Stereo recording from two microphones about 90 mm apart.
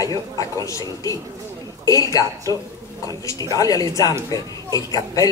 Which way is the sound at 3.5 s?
40° left (ahead or behind).